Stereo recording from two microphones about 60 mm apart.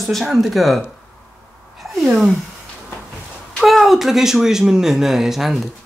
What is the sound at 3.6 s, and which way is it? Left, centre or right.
Speech, centre.